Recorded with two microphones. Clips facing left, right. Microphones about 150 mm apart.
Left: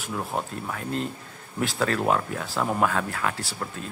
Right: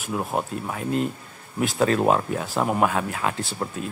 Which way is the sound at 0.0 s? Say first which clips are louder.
Right 3 dB; 15° right (ahead or behind).